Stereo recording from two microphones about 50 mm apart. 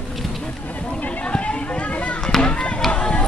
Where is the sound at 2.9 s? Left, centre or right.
Left.